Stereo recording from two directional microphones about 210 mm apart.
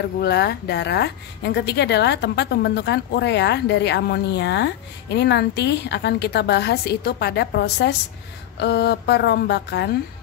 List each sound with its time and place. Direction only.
0.2 s a woman's voice: 50° left (ahead or behind)